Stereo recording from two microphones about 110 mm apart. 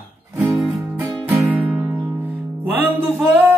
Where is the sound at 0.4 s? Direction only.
Centre (ahead or behind).